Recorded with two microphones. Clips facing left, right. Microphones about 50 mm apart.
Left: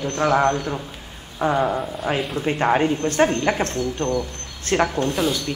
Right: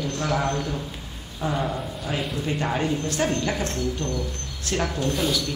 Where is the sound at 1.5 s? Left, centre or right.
Centre.